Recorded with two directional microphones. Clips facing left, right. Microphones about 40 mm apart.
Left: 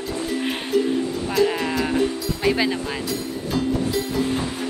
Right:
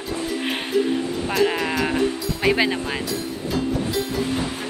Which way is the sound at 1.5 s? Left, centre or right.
Centre.